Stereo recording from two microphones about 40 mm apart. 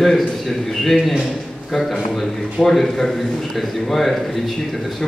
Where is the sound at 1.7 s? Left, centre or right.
Centre.